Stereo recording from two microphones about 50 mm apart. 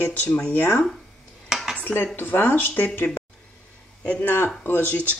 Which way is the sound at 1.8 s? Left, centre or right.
Left.